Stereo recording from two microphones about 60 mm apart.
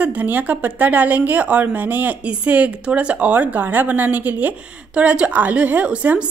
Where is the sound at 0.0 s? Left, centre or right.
Right.